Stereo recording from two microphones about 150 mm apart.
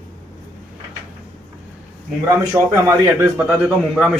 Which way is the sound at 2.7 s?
15° right (ahead or behind).